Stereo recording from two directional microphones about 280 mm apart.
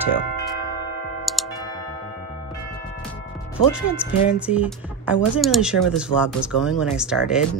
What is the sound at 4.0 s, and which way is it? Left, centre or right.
Speech, centre.